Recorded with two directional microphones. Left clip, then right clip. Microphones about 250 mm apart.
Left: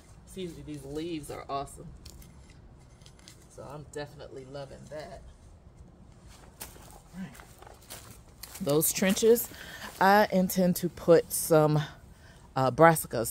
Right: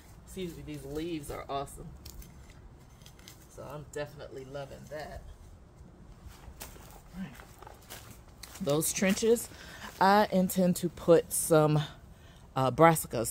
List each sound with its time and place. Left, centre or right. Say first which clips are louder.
0.3 s speech: left 1 dB; centre
3.3 s speech: even; centre
6.6 s a sound: left 1 dB; left
7.2 s walk: even; left
8.6 s speech: left 2 dB; left; by 13.3 s centre